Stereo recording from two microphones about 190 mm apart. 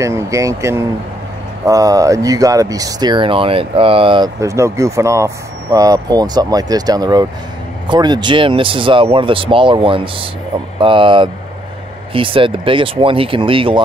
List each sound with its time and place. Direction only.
0.0 s speech: 15° right (ahead or behind)